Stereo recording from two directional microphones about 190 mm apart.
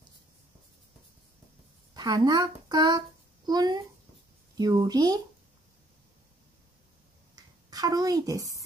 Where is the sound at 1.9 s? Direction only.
20° right (ahead or behind).